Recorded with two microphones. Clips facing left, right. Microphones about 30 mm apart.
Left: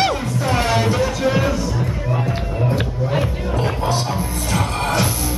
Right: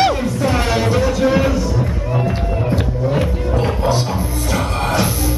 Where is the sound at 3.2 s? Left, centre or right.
Centre.